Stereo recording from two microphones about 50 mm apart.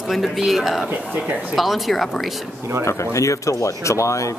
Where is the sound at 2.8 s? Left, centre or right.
Left.